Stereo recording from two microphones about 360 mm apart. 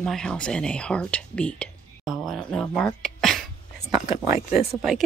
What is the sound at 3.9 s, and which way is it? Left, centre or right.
Speech, centre.